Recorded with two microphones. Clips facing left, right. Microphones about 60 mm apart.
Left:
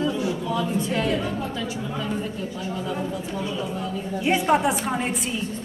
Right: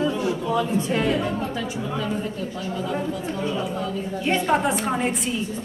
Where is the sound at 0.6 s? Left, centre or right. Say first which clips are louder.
Right 2 dB; right.